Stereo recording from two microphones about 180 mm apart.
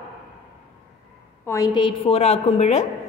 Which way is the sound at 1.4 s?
20° left (ahead or behind).